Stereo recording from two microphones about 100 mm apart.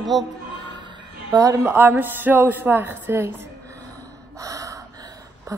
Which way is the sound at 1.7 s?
20° right (ahead or behind).